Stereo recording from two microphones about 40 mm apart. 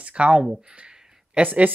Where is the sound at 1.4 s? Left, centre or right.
Right.